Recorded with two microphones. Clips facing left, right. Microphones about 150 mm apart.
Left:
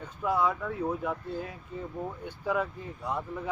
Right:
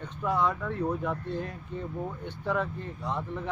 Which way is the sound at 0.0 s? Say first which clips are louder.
Even; 5° left (ahead or behind).